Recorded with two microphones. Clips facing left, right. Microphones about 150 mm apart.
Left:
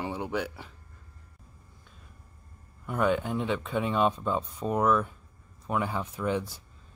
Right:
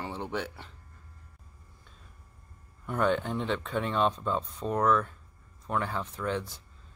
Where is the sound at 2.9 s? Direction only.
5° left (ahead or behind).